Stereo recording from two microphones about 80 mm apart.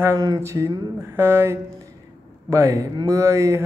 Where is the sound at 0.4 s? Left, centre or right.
Right.